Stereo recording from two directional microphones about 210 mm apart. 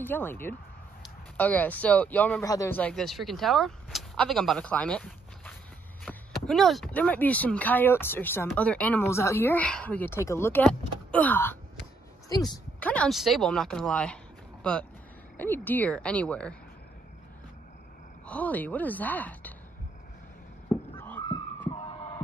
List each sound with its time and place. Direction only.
0.0 s speech: 10° left (ahead or behind)
18.2 s speech: 5° left (ahead or behind)
21.0 s a sound: 10° left (ahead or behind)